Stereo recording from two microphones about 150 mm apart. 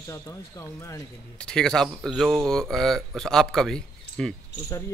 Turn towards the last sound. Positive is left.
turn(degrees=5)  # may be behind; listen again after turning